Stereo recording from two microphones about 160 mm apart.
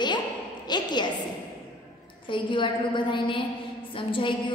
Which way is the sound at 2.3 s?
30° left (ahead or behind).